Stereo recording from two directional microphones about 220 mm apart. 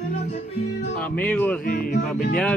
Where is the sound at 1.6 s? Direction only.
40° left (ahead or behind).